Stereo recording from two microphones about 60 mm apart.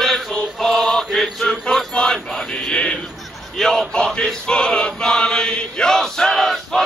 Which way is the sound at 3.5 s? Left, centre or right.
Centre.